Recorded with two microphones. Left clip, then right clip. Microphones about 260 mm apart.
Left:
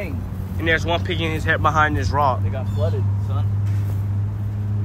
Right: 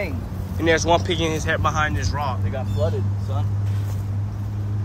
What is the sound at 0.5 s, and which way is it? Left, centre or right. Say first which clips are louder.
Speech: right 2 dB; centre.